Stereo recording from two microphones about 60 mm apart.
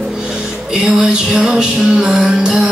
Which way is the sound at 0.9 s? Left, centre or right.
Centre.